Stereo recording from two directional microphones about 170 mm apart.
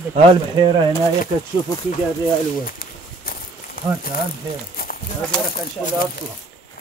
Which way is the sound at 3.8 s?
60° left (ahead or behind).